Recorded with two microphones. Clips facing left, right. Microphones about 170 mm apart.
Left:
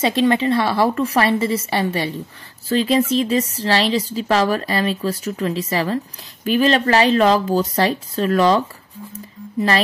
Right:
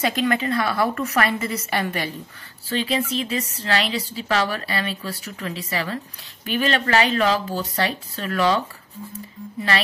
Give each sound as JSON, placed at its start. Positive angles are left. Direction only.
{"t": 0.0, "sound": "a woman's voice", "side_deg": 25}
{"t": 2.7, "sound": "speech", "side_deg": 40}